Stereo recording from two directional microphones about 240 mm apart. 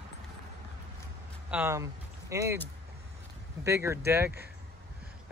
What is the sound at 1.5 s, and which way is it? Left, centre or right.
Speech, centre.